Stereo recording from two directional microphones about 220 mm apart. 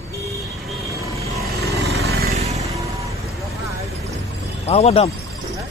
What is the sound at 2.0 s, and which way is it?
Vehicle, 45° right (ahead or behind).